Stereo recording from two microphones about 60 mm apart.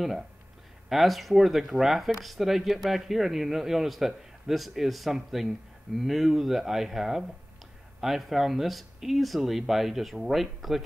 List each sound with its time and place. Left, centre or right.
0.8 s speech: centre